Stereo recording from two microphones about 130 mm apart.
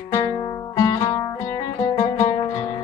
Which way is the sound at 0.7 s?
25° left (ahead or behind).